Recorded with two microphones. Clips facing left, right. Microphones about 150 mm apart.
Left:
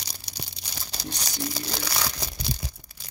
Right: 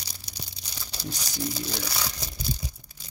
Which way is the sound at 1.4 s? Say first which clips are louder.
Right 1 dB; 80° left.